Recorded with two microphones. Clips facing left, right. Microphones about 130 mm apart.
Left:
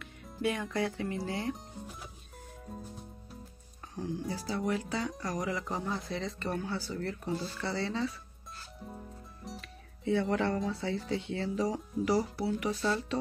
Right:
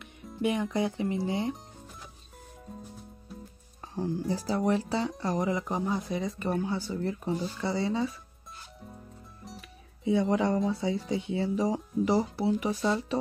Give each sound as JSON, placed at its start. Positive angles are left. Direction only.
{"t": 0.4, "sound": "speech", "side_deg": -20}
{"t": 3.8, "sound": "music", "side_deg": -35}
{"t": 4.3, "sound": "speech", "side_deg": -40}
{"t": 9.4, "sound": "music", "side_deg": 0}
{"t": 10.3, "sound": "speech", "side_deg": -15}